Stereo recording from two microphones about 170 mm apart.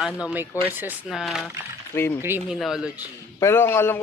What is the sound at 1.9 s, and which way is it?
Speech, 15° left (ahead or behind).